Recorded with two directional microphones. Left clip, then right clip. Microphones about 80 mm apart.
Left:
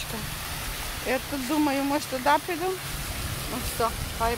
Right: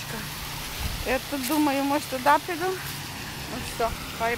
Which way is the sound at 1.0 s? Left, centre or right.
Centre.